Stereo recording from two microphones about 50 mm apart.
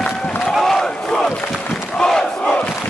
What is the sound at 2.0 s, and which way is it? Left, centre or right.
Crowd, centre.